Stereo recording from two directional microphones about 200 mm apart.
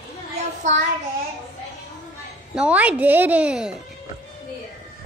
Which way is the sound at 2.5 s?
5° right (ahead or behind).